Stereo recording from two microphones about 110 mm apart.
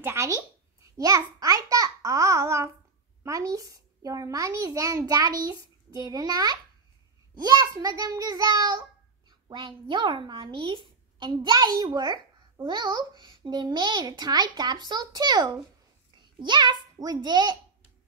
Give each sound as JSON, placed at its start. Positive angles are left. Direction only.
{"t": 0.0, "sound": "a child's voice", "side_deg": -25}